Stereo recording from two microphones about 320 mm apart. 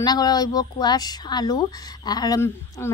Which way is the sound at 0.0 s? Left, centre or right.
Centre.